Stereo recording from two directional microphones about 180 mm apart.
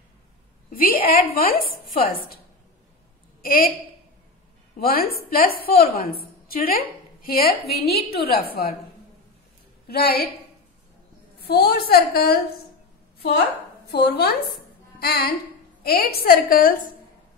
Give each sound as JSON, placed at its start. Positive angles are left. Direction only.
{"t": 0.7, "sound": "a woman's voice", "side_deg": 50}
{"t": 3.4, "sound": "a woman's voice", "side_deg": 55}
{"t": 4.7, "sound": "a woman's voice", "side_deg": 55}
{"t": 9.8, "sound": "a woman's voice", "side_deg": 60}
{"t": 11.4, "sound": "a woman's voice", "side_deg": 60}
{"t": 13.8, "sound": "a woman's voice", "side_deg": 60}